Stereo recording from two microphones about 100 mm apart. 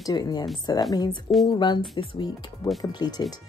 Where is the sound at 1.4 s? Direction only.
50° left (ahead or behind).